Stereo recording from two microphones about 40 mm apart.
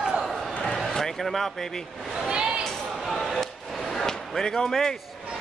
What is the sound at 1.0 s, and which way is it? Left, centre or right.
Speech, centre.